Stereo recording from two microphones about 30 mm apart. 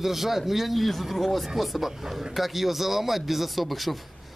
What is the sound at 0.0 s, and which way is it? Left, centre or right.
Speech, centre.